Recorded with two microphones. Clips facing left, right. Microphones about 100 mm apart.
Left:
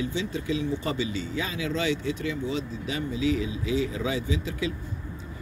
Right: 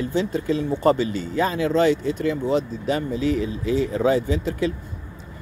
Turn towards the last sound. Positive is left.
turn(degrees=-50)  # may be behind; listen again after turning